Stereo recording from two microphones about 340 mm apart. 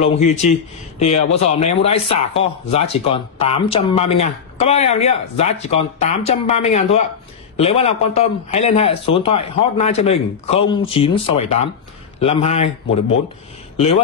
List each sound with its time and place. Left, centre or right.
0.0 s speech: centre